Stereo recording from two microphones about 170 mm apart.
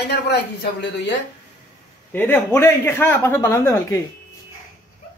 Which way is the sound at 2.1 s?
10° left (ahead or behind).